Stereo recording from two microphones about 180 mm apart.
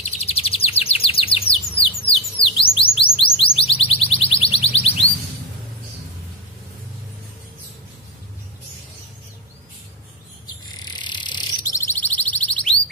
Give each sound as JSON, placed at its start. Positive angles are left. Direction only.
{"t": 0.0, "sound": "chirp", "side_deg": 35}
{"t": 2.0, "sound": "bird", "side_deg": 30}
{"t": 10.8, "sound": "bird", "side_deg": 25}